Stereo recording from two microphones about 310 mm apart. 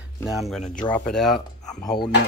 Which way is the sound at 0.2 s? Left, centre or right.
Centre.